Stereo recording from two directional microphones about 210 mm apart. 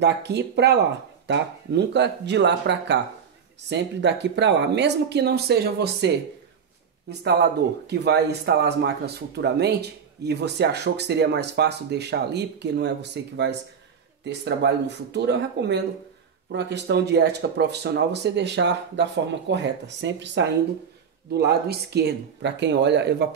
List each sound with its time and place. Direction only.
0.0 s speech: 55° right (ahead or behind)
7.8 s speech: 50° right (ahead or behind)